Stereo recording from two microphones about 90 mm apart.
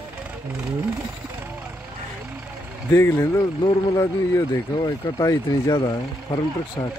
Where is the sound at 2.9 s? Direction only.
30° left (ahead or behind).